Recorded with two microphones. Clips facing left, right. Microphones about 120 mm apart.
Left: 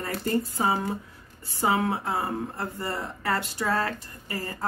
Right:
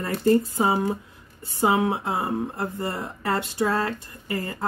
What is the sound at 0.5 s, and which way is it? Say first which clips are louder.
Speech: right 4 dB; 20° right (ahead or behind).